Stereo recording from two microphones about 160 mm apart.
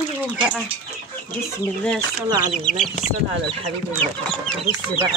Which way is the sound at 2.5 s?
Centre (ahead or behind).